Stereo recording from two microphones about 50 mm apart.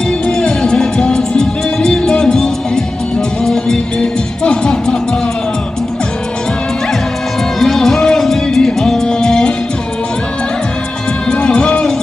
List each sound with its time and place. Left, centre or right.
0.3 s music: centre
7.6 s music: centre
11.2 s music: left